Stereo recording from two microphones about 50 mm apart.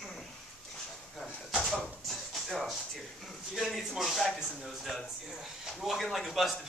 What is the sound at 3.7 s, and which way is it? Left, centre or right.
Speech, centre.